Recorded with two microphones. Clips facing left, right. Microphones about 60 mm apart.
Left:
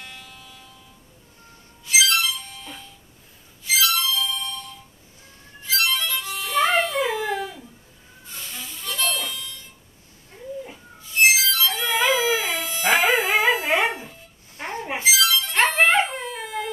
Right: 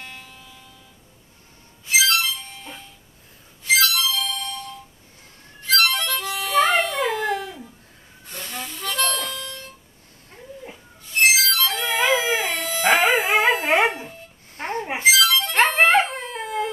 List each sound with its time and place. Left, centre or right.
0.0 s a sound: right
2.2 s music: right
3.7 s music: right
5.7 s music: right
8.3 s harmonica: right
11.1 s music: right
11.8 s dog: centre
12.3 s dog: right
14.6 s a sound: right
15.0 s dog: right